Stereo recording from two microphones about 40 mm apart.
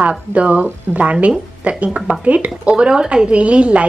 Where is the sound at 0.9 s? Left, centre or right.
Right.